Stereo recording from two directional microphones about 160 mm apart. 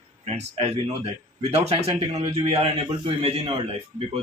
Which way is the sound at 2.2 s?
35° right (ahead or behind).